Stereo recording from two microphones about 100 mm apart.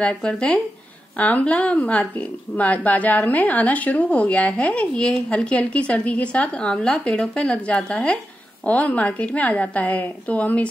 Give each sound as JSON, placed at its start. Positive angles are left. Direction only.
{"t": 0.0, "sound": "a woman's voice", "side_deg": 10}